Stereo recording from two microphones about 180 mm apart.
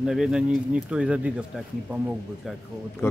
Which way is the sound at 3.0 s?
15° left (ahead or behind).